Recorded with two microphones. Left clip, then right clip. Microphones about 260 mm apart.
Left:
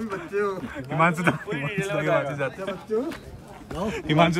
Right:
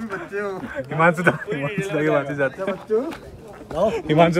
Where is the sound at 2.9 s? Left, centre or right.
Right.